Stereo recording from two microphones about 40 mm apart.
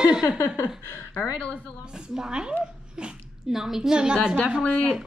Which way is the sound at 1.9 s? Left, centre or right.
Centre.